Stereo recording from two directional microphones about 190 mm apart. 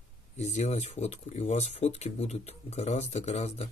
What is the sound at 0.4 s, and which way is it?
Speech, 35° left (ahead or behind).